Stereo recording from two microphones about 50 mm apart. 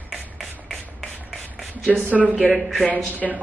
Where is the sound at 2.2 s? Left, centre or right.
Centre.